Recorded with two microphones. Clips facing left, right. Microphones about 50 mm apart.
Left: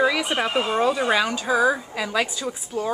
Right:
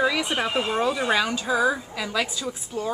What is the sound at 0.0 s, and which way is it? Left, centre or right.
Speech, centre.